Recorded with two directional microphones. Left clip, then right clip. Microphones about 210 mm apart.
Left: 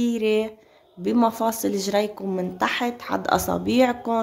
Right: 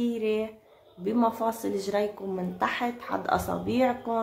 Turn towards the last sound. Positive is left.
turn(degrees=45)  # may be behind; listen again after turning